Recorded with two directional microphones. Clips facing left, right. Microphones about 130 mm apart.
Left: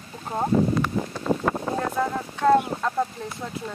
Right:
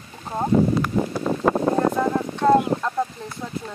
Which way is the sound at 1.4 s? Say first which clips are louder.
Right 6 dB; 40° right (ahead or behind).